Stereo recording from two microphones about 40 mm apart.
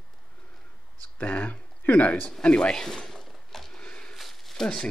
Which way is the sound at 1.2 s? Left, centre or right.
Left.